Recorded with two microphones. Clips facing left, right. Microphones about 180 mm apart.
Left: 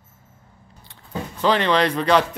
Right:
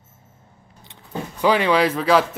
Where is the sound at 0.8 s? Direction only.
20° right (ahead or behind).